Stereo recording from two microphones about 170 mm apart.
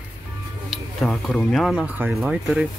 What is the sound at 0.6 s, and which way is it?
Speech, centre (ahead or behind).